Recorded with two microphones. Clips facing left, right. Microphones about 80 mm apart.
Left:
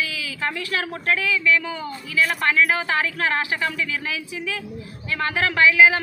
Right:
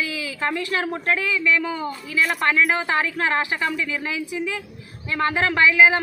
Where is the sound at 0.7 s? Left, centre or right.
Right.